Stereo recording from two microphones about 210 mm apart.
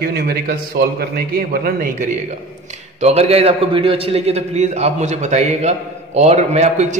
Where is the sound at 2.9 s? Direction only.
30° right (ahead or behind).